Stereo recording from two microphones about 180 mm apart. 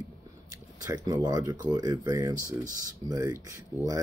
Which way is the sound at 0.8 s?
20° right (ahead or behind).